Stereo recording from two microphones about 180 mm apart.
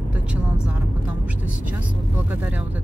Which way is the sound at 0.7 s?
10° right (ahead or behind).